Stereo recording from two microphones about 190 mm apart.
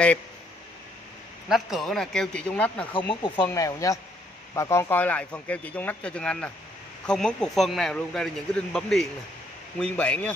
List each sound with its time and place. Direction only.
1.5 s speech: centre (ahead or behind)
3.1 s speech: 30° left (ahead or behind)
3.4 s speech: 15° left (ahead or behind)